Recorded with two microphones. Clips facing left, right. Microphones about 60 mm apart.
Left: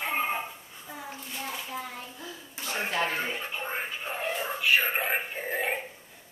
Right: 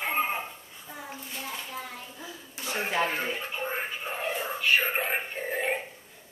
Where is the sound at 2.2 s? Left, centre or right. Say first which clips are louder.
Right 2 dB; centre.